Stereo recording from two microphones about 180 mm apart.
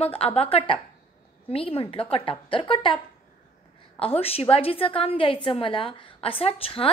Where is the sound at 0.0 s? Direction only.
35° left (ahead or behind).